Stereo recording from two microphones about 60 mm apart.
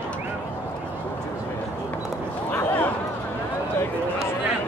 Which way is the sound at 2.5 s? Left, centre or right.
Left.